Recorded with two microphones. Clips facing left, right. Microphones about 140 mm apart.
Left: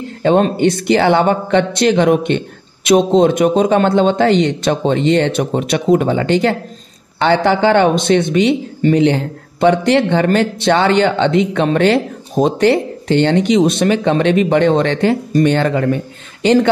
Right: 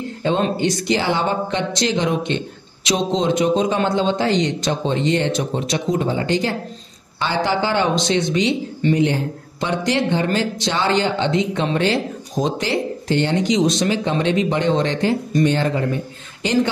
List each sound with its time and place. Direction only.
0.2 s a man's voice: 60° left (ahead or behind)